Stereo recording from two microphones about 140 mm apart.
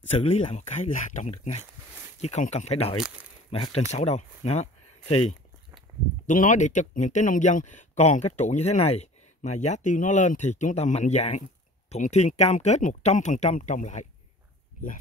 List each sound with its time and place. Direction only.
0.2 s speech: 50° left (ahead or behind); by 1.3 s 65° left (ahead or behind)
1.3 s speech: 50° left (ahead or behind)
5.9 s a sound: 25° right (ahead or behind)
6.2 s speech: 65° left (ahead or behind)